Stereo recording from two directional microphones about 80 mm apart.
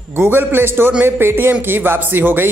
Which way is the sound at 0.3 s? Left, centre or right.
Right.